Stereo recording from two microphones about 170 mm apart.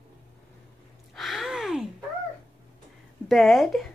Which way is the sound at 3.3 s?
Centre (ahead or behind).